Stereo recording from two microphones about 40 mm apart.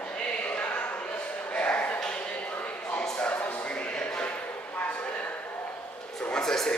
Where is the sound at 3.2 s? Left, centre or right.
Left.